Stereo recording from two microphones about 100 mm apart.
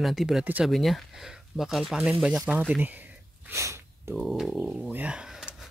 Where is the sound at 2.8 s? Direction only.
15° right (ahead or behind).